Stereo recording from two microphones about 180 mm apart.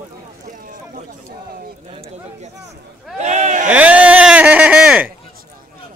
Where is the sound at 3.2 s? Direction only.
40° right (ahead or behind).